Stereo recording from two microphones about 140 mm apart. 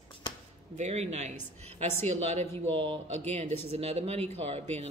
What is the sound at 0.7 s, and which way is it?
Speech, 50° right (ahead or behind).